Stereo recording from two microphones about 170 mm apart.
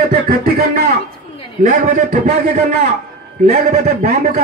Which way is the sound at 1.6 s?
50° right (ahead or behind).